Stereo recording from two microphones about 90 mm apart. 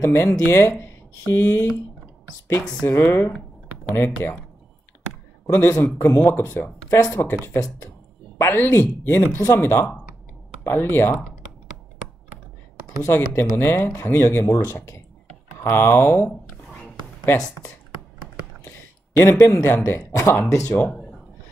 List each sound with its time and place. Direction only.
0.0 s speech: 25° left (ahead or behind)
3.0 s speech: 25° left (ahead or behind)
5.5 s speech: 25° left (ahead or behind)
8.4 s speech: 25° left (ahead or behind)
13.0 s speech: 25° left (ahead or behind)
18.6 s speech: 30° left (ahead or behind)